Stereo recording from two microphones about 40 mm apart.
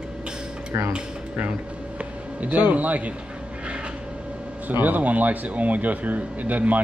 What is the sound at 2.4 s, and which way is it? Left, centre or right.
Speech, right.